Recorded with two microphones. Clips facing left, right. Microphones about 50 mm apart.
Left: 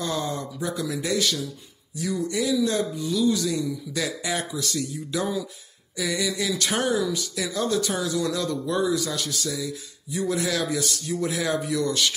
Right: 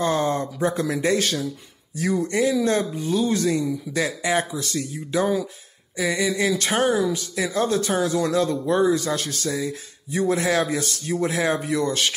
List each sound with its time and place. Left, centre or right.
0.0 s speech: right
2.0 s speech: right
3.5 s speech: right
5.9 s a sound: right
6.2 s speech: right